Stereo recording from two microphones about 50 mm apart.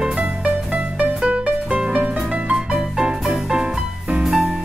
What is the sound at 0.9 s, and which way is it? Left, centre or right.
Music, right.